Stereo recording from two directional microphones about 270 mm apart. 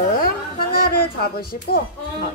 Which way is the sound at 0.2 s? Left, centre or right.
Left.